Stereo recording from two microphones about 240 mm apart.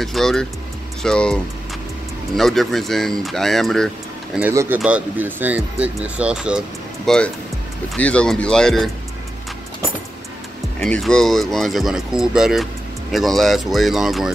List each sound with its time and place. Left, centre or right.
0.0 s speech: centre
10.8 s speech: centre